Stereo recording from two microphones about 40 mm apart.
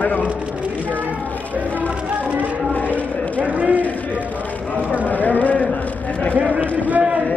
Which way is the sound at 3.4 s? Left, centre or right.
Right.